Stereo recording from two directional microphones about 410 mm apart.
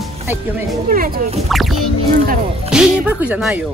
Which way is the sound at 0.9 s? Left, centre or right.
Centre.